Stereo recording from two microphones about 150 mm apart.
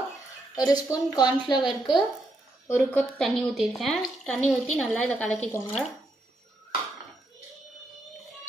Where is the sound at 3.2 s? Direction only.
Centre (ahead or behind).